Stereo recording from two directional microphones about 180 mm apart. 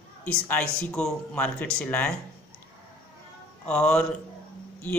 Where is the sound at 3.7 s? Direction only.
5° left (ahead or behind).